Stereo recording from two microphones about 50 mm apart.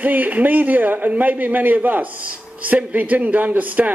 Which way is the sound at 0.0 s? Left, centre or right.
Right.